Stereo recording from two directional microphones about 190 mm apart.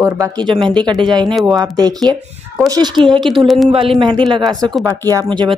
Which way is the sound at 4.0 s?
25° right (ahead or behind).